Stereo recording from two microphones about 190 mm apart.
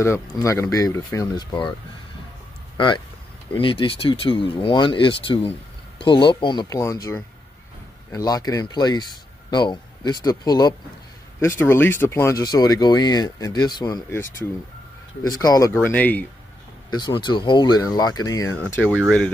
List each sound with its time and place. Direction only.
0.0 s speech: 15° left (ahead or behind)
3.6 s speech: 30° left (ahead or behind)
15.2 s speech: 20° left (ahead or behind)
16.9 s speech: 25° left (ahead or behind); by 19.3 s 5° left (ahead or behind)